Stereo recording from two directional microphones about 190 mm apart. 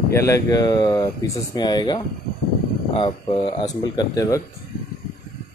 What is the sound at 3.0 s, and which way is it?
Speech, 25° left (ahead or behind).